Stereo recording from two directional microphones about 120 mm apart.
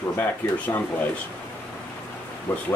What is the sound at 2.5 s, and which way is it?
Speech, 15° left (ahead or behind).